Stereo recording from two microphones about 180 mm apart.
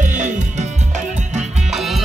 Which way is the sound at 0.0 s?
45° right (ahead or behind).